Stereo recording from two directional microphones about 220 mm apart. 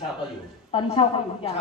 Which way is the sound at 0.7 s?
25° left (ahead or behind).